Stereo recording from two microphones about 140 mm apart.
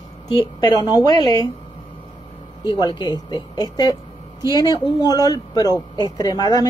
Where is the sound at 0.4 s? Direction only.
30° left (ahead or behind).